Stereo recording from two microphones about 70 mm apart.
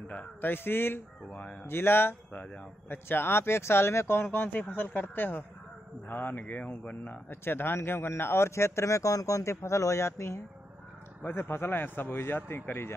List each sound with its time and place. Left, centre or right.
0.1 s speech: left
1.7 s speech: left
2.3 s speech: left
3.1 s speech: left; by 7.2 s centre
7.2 s speech: left